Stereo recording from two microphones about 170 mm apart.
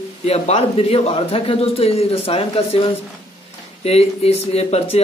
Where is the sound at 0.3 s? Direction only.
40° left (ahead or behind).